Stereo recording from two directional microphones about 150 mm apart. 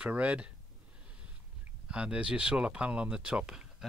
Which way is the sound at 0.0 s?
10° right (ahead or behind).